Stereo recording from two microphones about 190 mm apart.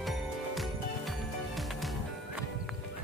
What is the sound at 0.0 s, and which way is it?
Music, centre (ahead or behind).